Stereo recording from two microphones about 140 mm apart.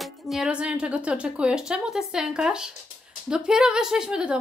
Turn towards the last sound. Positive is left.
turn(degrees=-5)  # may be behind; listen again after turning